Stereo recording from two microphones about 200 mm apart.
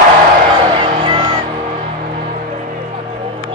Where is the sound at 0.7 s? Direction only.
25° right (ahead or behind).